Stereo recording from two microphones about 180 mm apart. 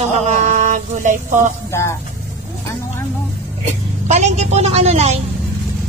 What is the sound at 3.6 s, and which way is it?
A woman's voice, 40° right (ahead or behind).